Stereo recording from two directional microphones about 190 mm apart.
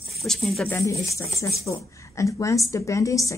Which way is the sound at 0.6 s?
15° left (ahead or behind).